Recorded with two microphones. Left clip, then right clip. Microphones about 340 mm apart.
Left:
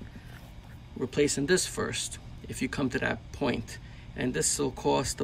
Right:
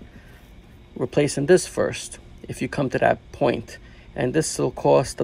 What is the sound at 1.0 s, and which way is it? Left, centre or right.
Speech, centre.